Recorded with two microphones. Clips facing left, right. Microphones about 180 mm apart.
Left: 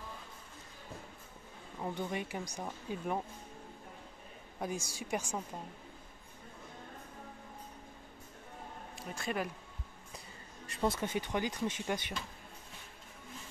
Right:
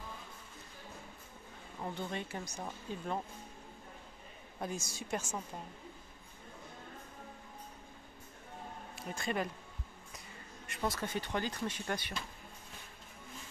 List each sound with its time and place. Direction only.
1.8 s speech: 15° left (ahead or behind)
4.6 s speech: 10° left (ahead or behind)
8.9 s speech: centre (ahead or behind)
10.7 s speech: 25° left (ahead or behind)